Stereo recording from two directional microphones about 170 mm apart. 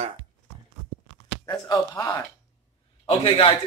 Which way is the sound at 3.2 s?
30° left (ahead or behind).